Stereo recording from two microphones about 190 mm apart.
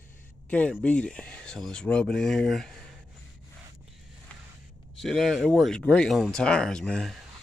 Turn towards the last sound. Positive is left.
turn(degrees=5)  # may be behind; listen again after turning